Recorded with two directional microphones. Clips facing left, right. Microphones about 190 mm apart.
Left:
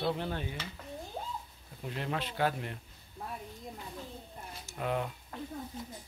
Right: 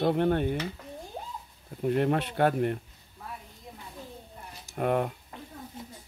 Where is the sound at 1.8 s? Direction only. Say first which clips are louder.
Right 11 dB; 55° right (ahead or behind).